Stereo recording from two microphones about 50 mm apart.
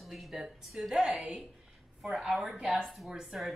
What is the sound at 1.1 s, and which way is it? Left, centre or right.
Speech, right.